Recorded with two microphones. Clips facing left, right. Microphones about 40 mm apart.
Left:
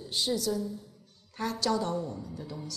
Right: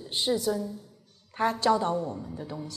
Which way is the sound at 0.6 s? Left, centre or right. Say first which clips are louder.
Even; centre.